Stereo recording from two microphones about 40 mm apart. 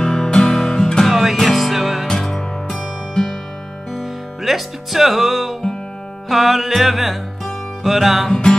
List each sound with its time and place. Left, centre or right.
0.0 s music: centre
1.0 s music: centre
3.9 s music: centre
8.3 s music: centre